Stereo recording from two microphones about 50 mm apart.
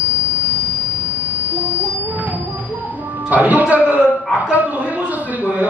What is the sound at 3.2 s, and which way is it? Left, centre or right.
A man's voice, right.